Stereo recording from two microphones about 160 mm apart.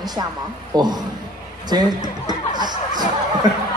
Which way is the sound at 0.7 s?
25° right (ahead or behind).